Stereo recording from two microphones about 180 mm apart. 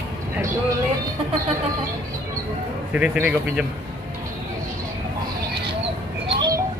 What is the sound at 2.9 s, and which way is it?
Speech, 5° right (ahead or behind).